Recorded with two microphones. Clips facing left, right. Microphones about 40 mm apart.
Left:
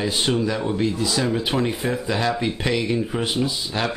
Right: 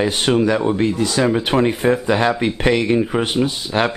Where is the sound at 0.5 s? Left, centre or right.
Right.